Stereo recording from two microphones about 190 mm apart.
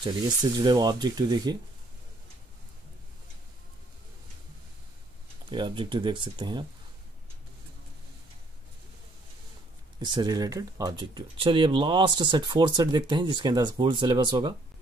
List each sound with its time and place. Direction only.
0.0 s speech: 20° right (ahead or behind)
5.5 s speech: 25° right (ahead or behind)
9.9 s speech: 20° right (ahead or behind)